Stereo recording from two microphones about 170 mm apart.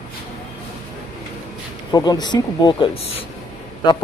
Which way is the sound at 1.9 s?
25° left (ahead or behind).